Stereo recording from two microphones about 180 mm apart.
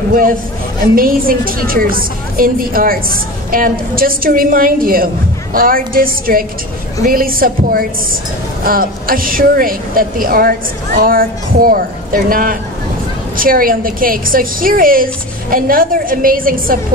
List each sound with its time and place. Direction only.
0.9 s a woman's voice: 55° right (ahead or behind)